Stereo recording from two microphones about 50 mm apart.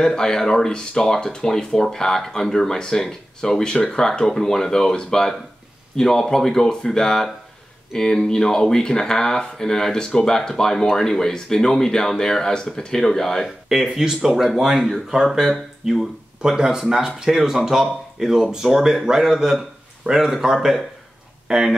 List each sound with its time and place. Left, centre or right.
0.0 s speech: centre
13.7 s speech: centre